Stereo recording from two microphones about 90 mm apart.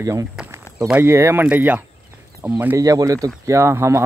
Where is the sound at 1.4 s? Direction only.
20° right (ahead or behind).